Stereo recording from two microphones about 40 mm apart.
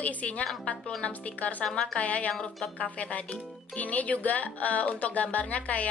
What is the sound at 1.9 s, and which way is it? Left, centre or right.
Speech, left.